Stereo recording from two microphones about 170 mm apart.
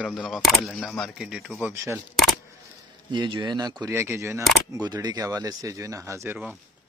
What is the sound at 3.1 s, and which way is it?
Speech, 25° right (ahead or behind).